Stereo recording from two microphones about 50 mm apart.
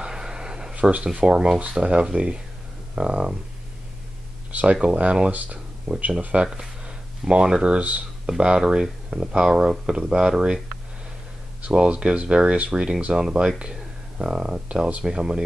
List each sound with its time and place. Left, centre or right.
0.0 s a sound: centre
0.7 s speech: right
1.2 s speech: centre
4.5 s speech: right
5.3 s speech: right
6.2 s speech: centre
11.7 s speech: right